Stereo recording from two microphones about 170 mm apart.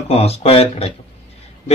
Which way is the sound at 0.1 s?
35° left (ahead or behind).